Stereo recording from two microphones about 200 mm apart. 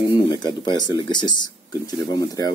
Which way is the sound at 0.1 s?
20° left (ahead or behind).